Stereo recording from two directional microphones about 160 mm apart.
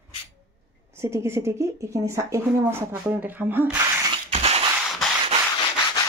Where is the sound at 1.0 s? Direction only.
15° right (ahead or behind).